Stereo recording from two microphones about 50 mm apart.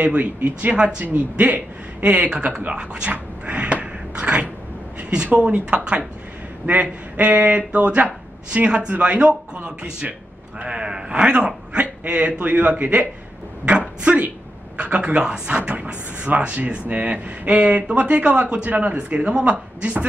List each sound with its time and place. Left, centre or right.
0.0 s a man's voice: right